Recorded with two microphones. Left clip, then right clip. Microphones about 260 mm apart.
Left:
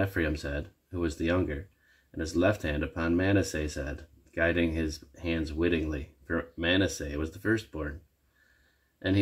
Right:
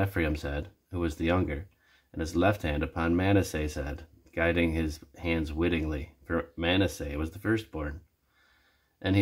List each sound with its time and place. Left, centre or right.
0.0 s speech: centre